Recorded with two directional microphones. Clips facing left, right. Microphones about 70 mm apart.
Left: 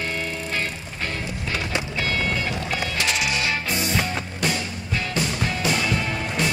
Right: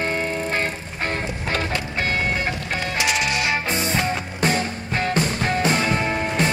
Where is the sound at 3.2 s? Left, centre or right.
Right.